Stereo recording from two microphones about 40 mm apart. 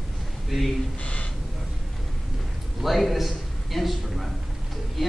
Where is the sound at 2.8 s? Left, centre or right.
Centre.